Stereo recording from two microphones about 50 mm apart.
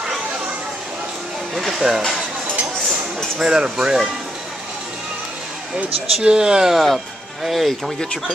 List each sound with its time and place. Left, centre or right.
1.5 s speech: centre
3.3 s speech: centre
6.2 s speech: centre
6.7 s speech: centre